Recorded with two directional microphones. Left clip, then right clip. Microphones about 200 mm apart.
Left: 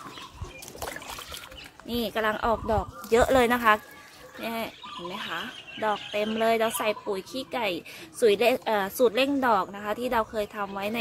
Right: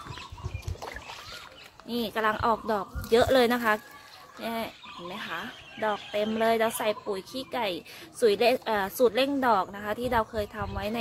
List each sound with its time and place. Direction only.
0.7 s rowboat: 40° left (ahead or behind)
1.9 s speech: 5° left (ahead or behind)